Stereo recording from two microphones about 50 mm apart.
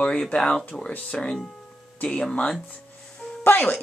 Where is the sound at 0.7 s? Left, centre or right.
Left.